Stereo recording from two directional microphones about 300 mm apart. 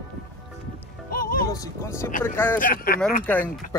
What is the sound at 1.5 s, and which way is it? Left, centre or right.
Speech, centre.